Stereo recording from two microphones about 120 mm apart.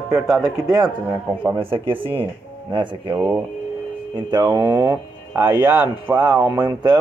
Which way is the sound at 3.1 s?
15° right (ahead or behind).